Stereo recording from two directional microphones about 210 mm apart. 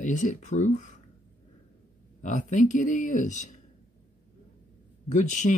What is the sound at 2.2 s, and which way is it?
Speech, 35° left (ahead or behind).